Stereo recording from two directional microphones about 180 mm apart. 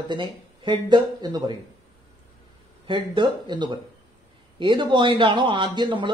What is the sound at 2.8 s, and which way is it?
A man's voice, 25° right (ahead or behind).